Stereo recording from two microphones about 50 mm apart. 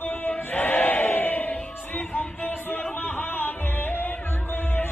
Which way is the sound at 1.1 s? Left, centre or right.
Left.